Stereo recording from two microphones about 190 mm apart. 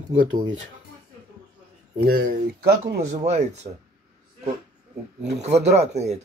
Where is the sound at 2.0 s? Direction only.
55° right (ahead or behind).